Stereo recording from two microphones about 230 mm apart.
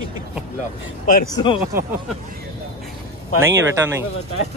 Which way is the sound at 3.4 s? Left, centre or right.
Centre.